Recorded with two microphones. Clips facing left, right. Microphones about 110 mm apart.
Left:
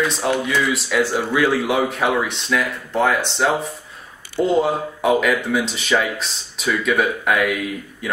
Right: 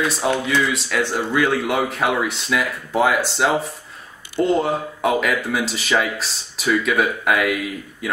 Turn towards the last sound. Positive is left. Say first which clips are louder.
# even
turn(degrees=0)  # may be behind; listen again after turning